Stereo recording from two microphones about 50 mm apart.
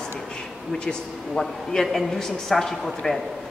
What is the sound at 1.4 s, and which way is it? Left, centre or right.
A woman's voice, centre.